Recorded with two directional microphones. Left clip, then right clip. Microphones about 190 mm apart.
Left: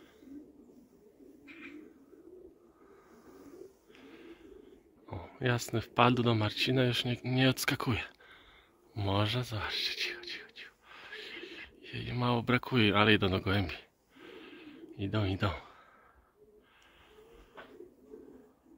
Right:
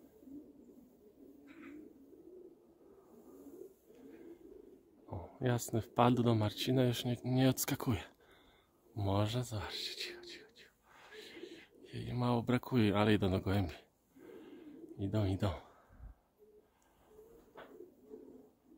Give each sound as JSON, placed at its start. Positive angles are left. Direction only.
{"t": 5.0, "sound": "speech", "side_deg": -10}
{"t": 8.9, "sound": "a sound", "side_deg": -10}
{"t": 17.6, "sound": "pigeon", "side_deg": 40}